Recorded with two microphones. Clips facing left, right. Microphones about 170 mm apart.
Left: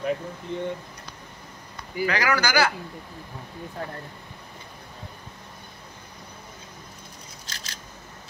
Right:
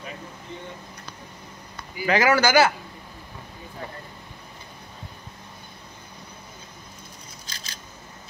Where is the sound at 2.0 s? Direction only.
20° right (ahead or behind).